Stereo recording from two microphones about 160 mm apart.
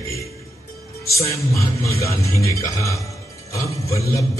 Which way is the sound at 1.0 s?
20° left (ahead or behind).